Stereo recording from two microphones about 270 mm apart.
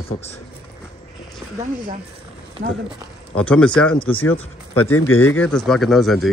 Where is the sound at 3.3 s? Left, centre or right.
Centre.